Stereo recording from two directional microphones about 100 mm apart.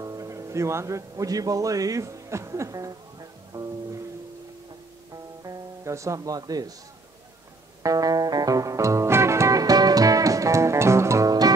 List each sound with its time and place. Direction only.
0.0 s speech: 35° right (ahead or behind)
5.1 s music: 35° right (ahead or behind)
7.8 s music: 35° right (ahead or behind)